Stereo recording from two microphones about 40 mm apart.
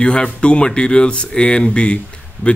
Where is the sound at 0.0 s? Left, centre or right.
Left.